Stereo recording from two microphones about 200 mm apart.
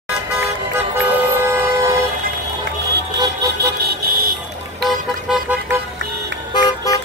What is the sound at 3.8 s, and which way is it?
Vehicle, 50° right (ahead or behind).